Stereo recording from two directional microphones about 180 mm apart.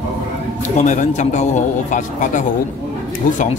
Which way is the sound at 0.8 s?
40° left (ahead or behind).